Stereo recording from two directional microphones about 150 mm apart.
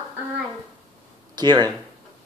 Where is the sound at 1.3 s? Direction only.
30° right (ahead or behind).